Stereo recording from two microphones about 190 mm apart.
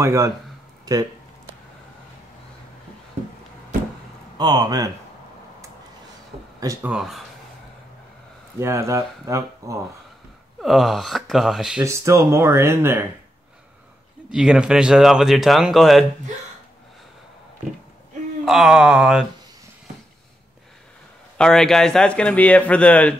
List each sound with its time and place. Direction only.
0.0 s speech: 15° right (ahead or behind)
4.4 s speech: 20° right (ahead or behind)
6.6 s speech: 15° right (ahead or behind)
6.9 s speech: centre (ahead or behind)
8.5 s speech: 15° right (ahead or behind)
10.6 s speech: centre (ahead or behind)
11.8 s speech: 15° right (ahead or behind)
14.3 s speech: 5° right (ahead or behind)
18.4 s speech: centre (ahead or behind)
21.4 s speech: 5° left (ahead or behind)